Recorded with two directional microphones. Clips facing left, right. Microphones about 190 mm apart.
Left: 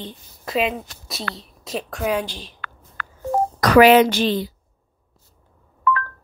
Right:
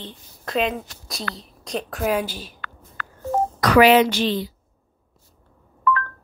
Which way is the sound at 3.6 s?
45° left (ahead or behind).